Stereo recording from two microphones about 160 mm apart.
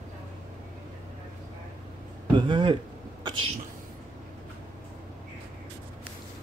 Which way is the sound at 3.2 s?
30° right (ahead or behind).